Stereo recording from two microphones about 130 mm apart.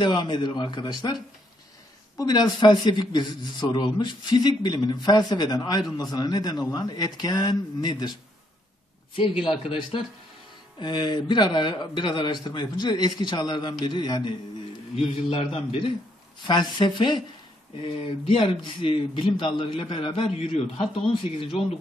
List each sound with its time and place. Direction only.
0.0 s a man's voice: 35° left (ahead or behind)
2.1 s a man's voice: 30° left (ahead or behind)
9.4 s a man's voice: 40° left (ahead or behind)
15.0 s a man's voice: 45° left (ahead or behind)